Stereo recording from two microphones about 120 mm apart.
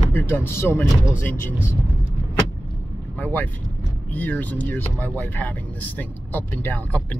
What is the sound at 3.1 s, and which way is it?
Speech, 15° left (ahead or behind).